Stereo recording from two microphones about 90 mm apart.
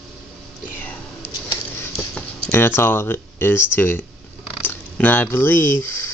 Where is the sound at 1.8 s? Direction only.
20° left (ahead or behind).